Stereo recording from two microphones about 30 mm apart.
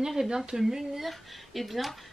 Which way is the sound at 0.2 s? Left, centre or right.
Centre.